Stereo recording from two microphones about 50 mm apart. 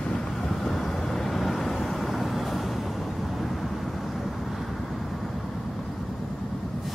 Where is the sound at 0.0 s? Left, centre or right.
Centre.